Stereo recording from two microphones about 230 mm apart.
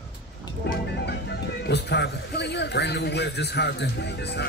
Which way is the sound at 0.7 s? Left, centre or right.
Left.